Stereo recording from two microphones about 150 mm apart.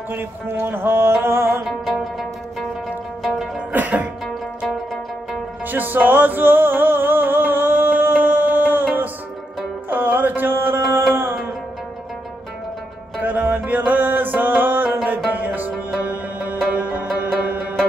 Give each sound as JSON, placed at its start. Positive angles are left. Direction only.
{"t": 0.1, "sound": "music", "side_deg": -15}
{"t": 1.6, "sound": "music", "side_deg": 0}
{"t": 3.2, "sound": "zither", "side_deg": 0}
{"t": 3.7, "sound": "music", "side_deg": -10}
{"t": 4.3, "sound": "zither", "side_deg": 0}
{"t": 5.3, "sound": "music", "side_deg": -10}
{"t": 9.8, "sound": "mantra", "side_deg": -10}
{"t": 11.1, "sound": "music", "side_deg": -15}
{"t": 13.2, "sound": "music", "side_deg": -10}